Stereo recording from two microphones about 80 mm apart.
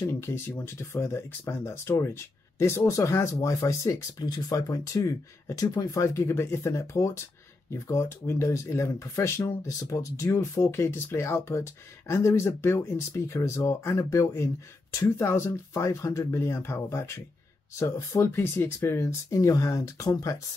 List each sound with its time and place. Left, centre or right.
0.2 s speech: left
4.2 s speech: left
9.7 s speech: left
10.3 s speech: left